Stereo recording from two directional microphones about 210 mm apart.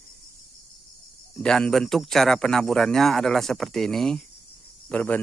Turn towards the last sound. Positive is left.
turn(degrees=5)  # may be behind; listen again after turning